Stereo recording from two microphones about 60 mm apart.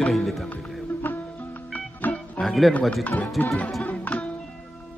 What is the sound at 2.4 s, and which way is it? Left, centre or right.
Music, centre.